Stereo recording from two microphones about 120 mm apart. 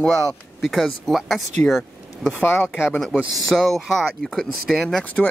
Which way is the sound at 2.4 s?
20° left (ahead or behind).